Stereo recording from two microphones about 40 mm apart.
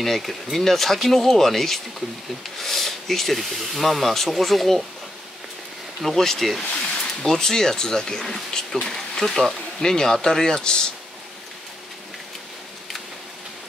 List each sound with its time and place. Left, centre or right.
0.0 s speech: centre
6.0 s speech: centre